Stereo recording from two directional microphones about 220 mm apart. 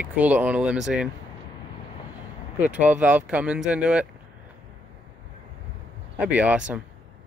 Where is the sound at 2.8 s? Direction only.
5° right (ahead or behind).